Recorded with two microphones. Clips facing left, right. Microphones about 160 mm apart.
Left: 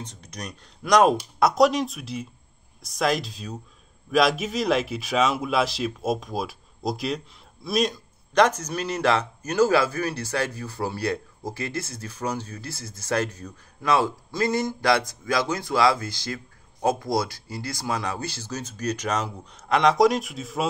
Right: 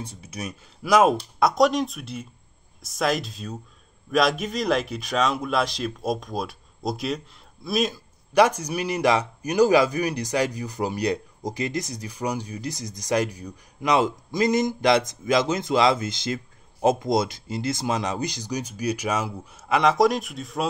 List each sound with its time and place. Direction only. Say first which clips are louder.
0.0 s a man's voice: right 3 dB; 10° right (ahead or behind)